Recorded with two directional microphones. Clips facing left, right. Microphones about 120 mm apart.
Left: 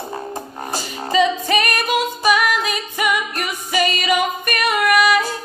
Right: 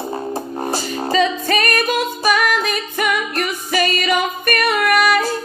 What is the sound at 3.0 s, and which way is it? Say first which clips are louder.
Music: even; 15° left (ahead or behind).